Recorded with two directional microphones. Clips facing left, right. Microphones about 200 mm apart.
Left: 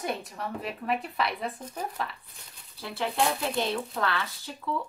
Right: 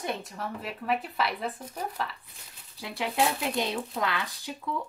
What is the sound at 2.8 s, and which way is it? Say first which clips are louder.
Speech: even; 15° right (ahead or behind).